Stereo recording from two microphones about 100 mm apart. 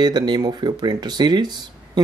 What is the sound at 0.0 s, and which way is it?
Speech, 45° right (ahead or behind).